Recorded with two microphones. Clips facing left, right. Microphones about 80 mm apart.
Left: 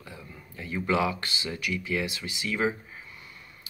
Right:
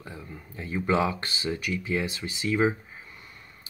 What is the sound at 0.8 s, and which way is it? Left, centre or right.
Speech, right.